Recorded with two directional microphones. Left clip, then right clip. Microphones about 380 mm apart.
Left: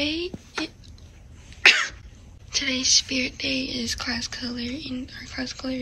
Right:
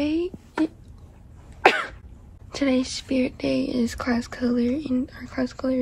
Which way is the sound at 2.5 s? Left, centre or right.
Centre.